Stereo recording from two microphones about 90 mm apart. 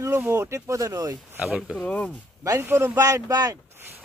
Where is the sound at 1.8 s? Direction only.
15° left (ahead or behind).